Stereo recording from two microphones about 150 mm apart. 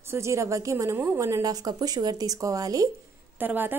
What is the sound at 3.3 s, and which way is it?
Speech, 15° right (ahead or behind).